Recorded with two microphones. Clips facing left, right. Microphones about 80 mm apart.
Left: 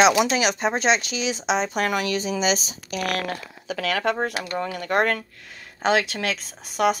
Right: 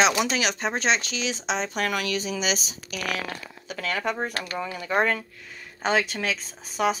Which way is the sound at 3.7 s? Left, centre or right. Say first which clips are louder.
Left 4 dB; left.